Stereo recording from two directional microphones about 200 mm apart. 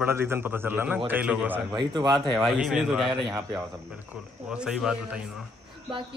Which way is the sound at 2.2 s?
Centre (ahead or behind).